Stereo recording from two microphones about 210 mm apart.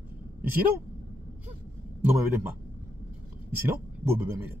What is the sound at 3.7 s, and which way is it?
Speech, 10° right (ahead or behind).